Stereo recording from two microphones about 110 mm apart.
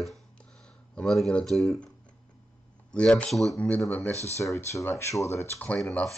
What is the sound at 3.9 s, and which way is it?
Speech, 15° left (ahead or behind).